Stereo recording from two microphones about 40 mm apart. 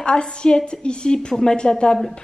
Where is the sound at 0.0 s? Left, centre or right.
Left.